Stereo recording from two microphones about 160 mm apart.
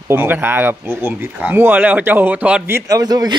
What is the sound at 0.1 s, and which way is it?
Speech, 15° right (ahead or behind).